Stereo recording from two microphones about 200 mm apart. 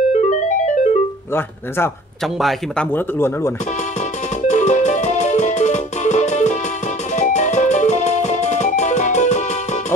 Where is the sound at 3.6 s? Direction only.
35° left (ahead or behind).